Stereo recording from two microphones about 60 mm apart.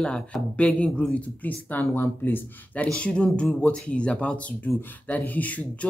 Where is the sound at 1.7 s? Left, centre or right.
Left.